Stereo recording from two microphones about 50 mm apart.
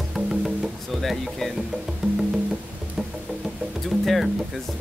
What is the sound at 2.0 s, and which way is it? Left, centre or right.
Music, right.